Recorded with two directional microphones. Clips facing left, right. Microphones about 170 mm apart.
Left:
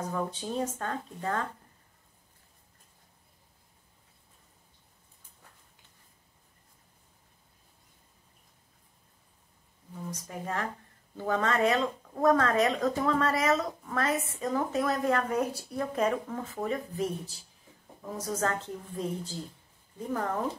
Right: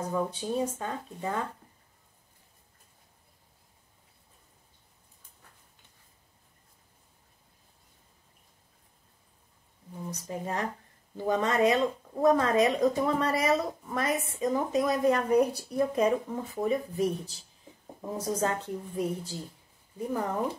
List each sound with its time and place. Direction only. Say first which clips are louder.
0.1 s speech: right 3 dB; 10° right (ahead or behind)
10.2 s speech: right 2 dB; 20° right (ahead or behind)
18.3 s speech: right 1 dB; 15° right (ahead or behind)